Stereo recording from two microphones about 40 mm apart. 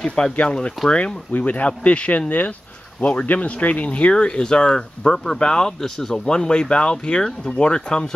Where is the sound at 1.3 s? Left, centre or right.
Left.